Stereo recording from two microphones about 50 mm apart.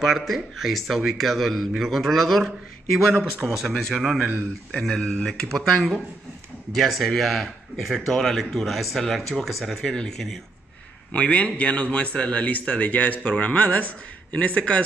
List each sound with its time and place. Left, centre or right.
0.0 s a man's voice: centre
4.8 s a man's voice: centre
11.1 s a man's voice: left